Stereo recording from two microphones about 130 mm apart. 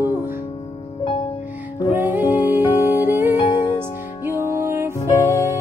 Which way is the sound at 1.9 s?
15° right (ahead or behind).